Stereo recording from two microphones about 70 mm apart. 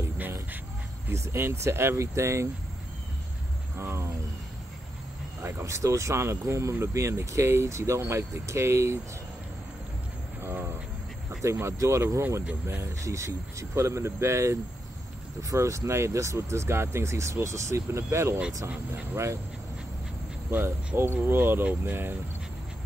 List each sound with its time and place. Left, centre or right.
1.1 s speech: right
3.7 s speech: right
5.4 s speech: right
10.4 s vehicle: right
11.2 s speech: right
20.4 s speech: right